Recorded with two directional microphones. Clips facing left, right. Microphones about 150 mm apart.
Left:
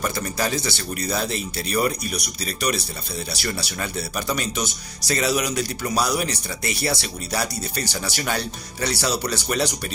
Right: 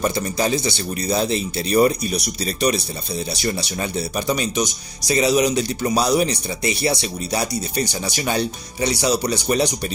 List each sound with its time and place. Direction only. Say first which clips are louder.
0.0 s speech: right 4 dB; 20° right (ahead or behind)